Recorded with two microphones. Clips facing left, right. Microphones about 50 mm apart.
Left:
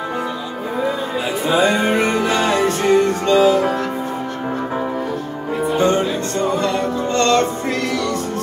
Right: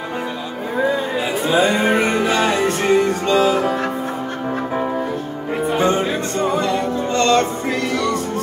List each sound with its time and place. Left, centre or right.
1.4 s music: centre
5.7 s music: centre